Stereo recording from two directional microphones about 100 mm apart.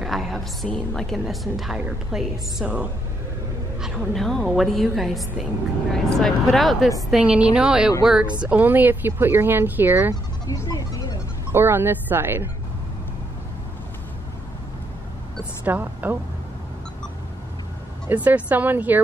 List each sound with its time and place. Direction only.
0.0 s a woman's voice: centre (ahead or behind)
2.1 s speech: 15° right (ahead or behind)
3.8 s a woman's voice: centre (ahead or behind)
7.1 s a woman's voice: 10° right (ahead or behind)
8.5 s speech: 15° right (ahead or behind)
10.4 s music: 35° left (ahead or behind)
11.5 s speech: 20° right (ahead or behind)
15.6 s speech: 20° right (ahead or behind)
18.0 s speech: 15° right (ahead or behind)